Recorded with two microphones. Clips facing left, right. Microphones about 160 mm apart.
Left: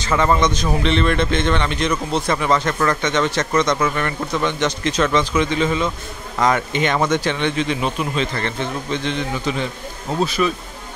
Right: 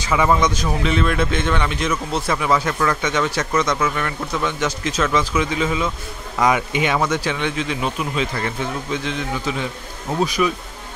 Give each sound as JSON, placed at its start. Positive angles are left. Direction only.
{"t": 0.0, "sound": "a man's voice", "side_deg": -10}